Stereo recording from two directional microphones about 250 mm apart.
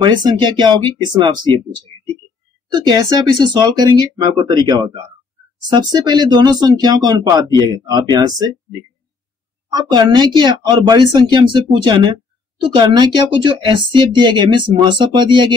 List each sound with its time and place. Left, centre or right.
0.0 s a woman's voice: centre
2.7 s a woman's voice: centre
9.7 s a woman's voice: centre